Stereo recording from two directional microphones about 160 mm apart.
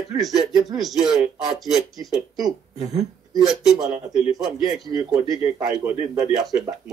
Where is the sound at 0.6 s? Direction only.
Centre (ahead or behind).